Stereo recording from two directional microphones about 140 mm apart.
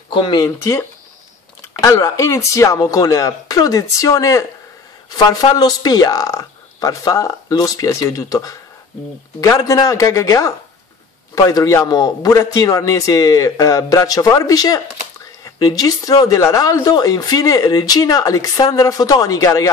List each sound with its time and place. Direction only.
0.1 s speech: 35° left (ahead or behind)
1.7 s speech: 20° left (ahead or behind)